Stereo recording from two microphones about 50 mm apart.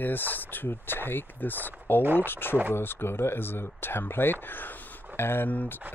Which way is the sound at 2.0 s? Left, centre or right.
Right.